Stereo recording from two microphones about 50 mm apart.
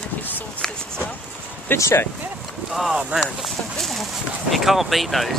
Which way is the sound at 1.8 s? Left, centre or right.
Left.